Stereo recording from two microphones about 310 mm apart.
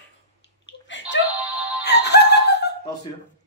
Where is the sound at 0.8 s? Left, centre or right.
Left.